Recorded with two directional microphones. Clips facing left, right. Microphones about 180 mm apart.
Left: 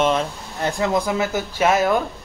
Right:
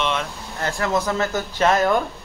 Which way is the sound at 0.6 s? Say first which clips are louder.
Left 2 dB; 15° left (ahead or behind).